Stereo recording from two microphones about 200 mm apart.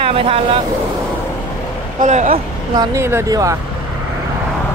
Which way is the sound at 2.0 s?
40° right (ahead or behind).